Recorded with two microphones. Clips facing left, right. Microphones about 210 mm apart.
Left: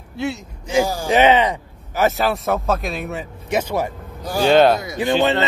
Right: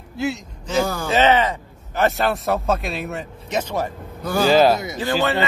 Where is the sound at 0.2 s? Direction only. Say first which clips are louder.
Even; centre (ahead or behind).